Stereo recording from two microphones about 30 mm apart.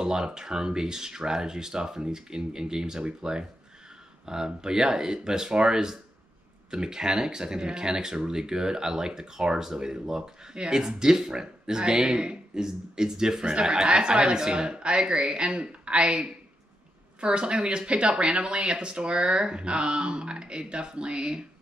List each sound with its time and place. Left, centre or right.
0.0 s speech: right
10.5 s speech: right